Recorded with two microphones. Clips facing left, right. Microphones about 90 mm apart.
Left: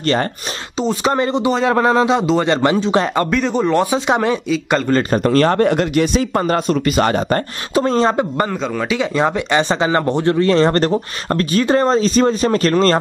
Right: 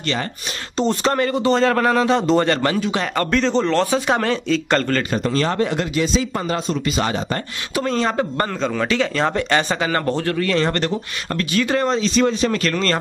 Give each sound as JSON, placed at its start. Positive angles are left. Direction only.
{"t": 0.0, "sound": "speech", "side_deg": 45}
{"t": 0.7, "sound": "speech", "side_deg": 5}
{"t": 1.1, "sound": "speech", "side_deg": 20}
{"t": 3.3, "sound": "speech", "side_deg": 10}
{"t": 5.1, "sound": "speech", "side_deg": 55}
{"t": 7.7, "sound": "speech", "side_deg": 30}
{"t": 8.2, "sound": "speech", "side_deg": 10}